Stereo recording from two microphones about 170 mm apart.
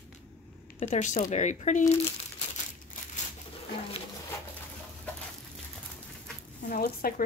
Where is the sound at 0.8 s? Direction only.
40° left (ahead or behind).